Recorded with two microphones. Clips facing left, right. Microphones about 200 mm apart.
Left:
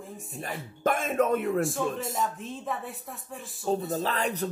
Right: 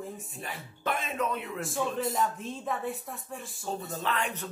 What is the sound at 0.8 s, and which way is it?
Speech, 45° left (ahead or behind).